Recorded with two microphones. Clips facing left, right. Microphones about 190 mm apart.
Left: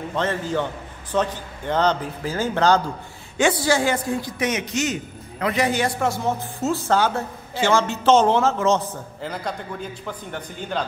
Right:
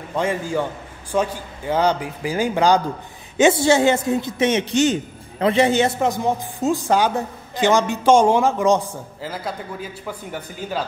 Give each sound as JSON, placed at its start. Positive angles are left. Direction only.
{"t": 0.1, "sound": "a man's voice", "side_deg": -10}
{"t": 3.3, "sound": "a man's voice", "side_deg": -25}